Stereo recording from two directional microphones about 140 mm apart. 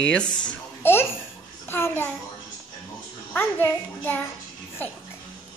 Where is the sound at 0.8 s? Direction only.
15° left (ahead or behind).